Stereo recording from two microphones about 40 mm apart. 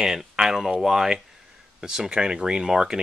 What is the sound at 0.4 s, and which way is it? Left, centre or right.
Speech, centre.